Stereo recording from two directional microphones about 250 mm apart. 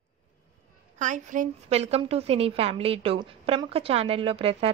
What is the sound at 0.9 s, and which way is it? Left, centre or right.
A woman's voice, right.